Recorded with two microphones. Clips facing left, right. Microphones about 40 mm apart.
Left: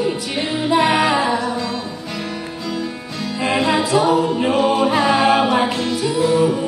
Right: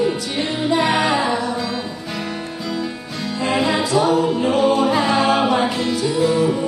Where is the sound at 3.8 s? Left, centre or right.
Centre.